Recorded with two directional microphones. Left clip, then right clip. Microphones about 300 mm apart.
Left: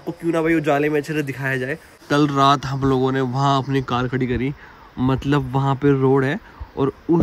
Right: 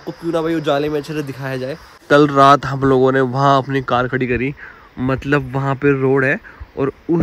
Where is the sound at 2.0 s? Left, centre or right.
Centre.